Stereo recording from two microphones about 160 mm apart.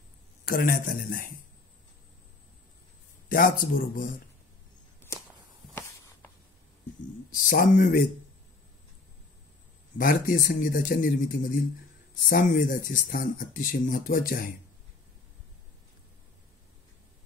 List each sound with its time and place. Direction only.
0.5 s speech: 60° left (ahead or behind)
3.3 s speech: 60° left (ahead or behind)
5.8 s writing: 15° left (ahead or behind)
7.2 s speech: 55° left (ahead or behind)
9.9 s speech: 60° left (ahead or behind)